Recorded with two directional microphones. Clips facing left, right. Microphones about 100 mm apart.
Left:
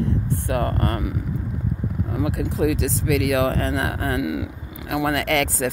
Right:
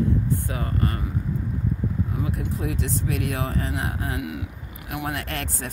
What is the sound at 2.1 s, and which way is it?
Speech, 85° left.